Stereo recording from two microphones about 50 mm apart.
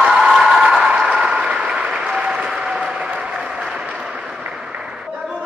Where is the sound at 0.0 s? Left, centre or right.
Centre.